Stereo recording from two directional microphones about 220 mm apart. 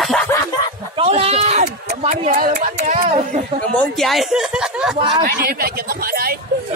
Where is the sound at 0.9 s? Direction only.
25° right (ahead or behind).